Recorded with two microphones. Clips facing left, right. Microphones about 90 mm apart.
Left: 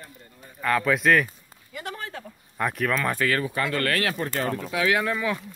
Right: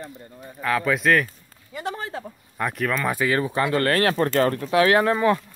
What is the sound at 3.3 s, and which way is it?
Speech, 25° right (ahead or behind).